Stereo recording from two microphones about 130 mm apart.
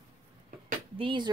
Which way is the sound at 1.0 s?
40° right (ahead or behind).